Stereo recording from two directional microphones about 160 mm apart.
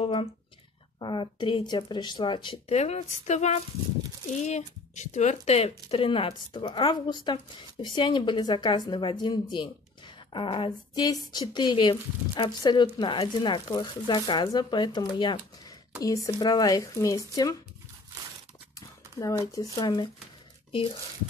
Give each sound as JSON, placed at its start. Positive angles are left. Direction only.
{"t": 0.0, "sound": "speech", "side_deg": 35}
{"t": 2.7, "sound": "speech", "side_deg": 45}
{"t": 18.8, "sound": "a sound", "side_deg": 20}
{"t": 19.7, "sound": "speech", "side_deg": 25}